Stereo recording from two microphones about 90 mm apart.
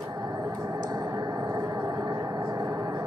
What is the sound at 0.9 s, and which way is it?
Vehicle, 45° right (ahead or behind).